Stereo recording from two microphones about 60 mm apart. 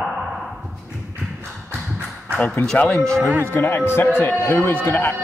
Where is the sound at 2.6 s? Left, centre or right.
Left.